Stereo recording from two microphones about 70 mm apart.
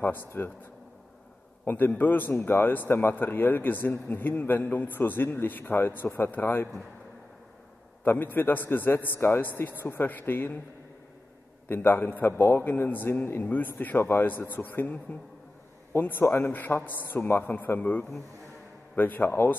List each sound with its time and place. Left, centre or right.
0.0 s a man's voice: left
1.6 s a man's voice: left
8.0 s a man's voice: left
11.7 s a man's voice: left